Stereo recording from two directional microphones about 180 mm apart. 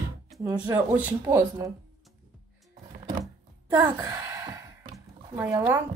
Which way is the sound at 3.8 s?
15° right (ahead or behind).